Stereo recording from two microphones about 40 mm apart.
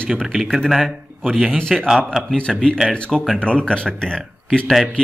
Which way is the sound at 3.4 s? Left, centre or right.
Left.